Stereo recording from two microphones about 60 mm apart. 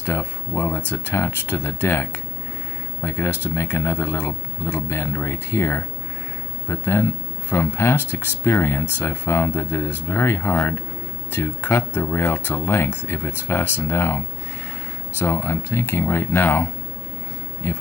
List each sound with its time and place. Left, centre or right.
0.0 s speech: left